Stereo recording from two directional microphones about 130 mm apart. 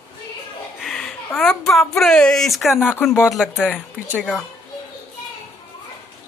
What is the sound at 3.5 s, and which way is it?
Speech, 15° left (ahead or behind).